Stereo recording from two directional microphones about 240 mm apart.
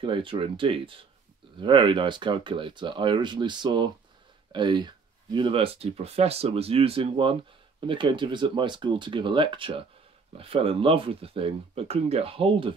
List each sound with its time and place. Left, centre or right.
0.0 s speech: right